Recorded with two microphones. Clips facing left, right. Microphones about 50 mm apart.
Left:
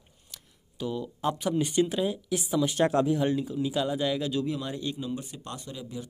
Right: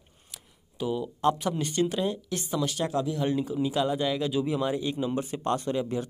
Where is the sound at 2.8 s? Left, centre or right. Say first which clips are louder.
Left 7 dB; left.